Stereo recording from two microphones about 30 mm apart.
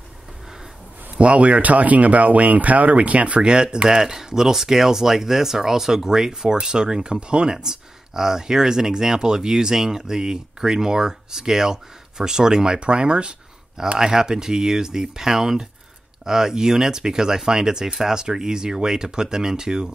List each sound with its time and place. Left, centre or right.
1.1 s speech: right
3.4 s speech: right
3.9 s speech: centre; by 7.5 s right
7.5 s speech: centre; by 13.3 s right
13.9 s speech: right